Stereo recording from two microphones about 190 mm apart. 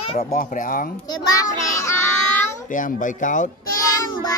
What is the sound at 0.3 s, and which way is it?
Speech, 45° left (ahead or behind).